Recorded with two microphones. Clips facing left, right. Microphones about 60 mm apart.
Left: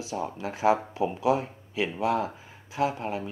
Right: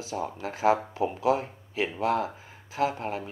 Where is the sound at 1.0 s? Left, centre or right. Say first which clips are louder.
Even; right.